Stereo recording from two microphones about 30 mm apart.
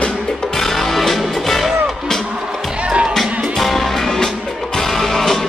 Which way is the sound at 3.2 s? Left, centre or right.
Centre.